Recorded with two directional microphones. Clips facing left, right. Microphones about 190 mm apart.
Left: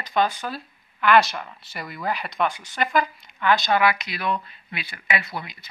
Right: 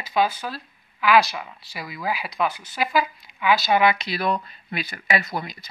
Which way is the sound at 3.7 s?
25° right (ahead or behind).